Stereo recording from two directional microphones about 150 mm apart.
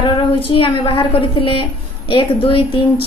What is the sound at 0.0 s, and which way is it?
A woman's voice, 35° left (ahead or behind).